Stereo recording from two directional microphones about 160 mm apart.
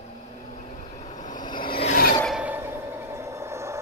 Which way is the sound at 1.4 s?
30° left (ahead or behind).